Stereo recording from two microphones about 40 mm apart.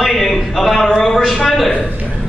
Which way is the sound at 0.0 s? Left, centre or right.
Centre.